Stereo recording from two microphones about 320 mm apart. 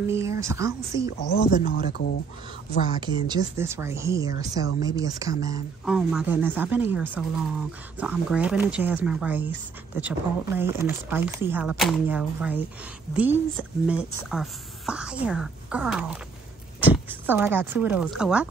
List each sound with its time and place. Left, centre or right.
0.0 s speech: centre
1.1 s speech: left
3.0 s speech: centre
17.1 s speech: centre